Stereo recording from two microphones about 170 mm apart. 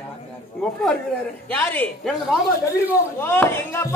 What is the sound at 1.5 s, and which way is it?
Speech, 10° left (ahead or behind).